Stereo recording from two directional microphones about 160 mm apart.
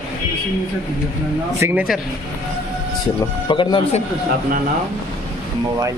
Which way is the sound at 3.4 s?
30° left (ahead or behind).